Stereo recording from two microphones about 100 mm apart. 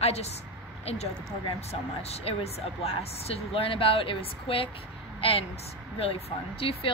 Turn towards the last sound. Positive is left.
turn(degrees=65)  # may be behind; listen again after turning